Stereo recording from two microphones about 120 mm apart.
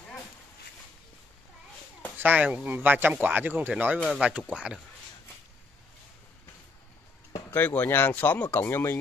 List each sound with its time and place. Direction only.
2.1 s speech: 15° right (ahead or behind)
7.5 s speech: 15° left (ahead or behind)